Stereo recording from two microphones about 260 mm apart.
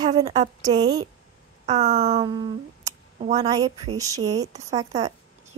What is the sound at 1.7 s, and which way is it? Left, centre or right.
A woman's voice, right.